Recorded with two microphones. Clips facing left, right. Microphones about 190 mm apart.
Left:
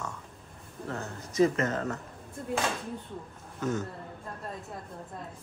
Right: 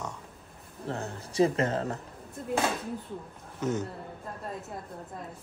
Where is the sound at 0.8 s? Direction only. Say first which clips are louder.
Right 2 dB; 30° right (ahead or behind).